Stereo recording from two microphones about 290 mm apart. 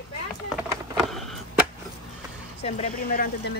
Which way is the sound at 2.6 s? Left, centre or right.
Left.